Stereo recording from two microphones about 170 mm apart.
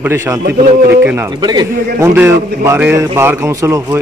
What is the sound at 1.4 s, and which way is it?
Speech, 25° right (ahead or behind).